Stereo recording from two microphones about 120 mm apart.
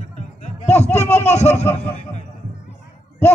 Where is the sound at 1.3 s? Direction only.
65° left (ahead or behind).